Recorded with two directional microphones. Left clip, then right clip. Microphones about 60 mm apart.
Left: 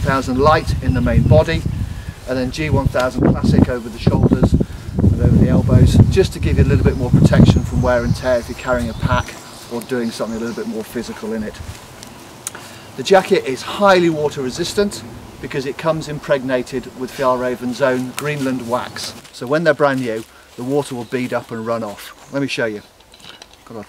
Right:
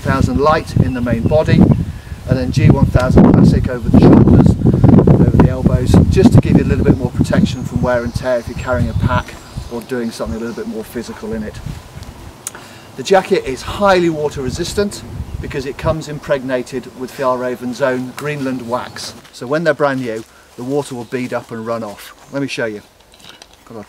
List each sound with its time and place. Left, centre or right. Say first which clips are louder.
0.0 s speech: right 1 dB; centre
13.0 s speech: even; centre
20.6 s speech: even; left
21.1 s speech: even; centre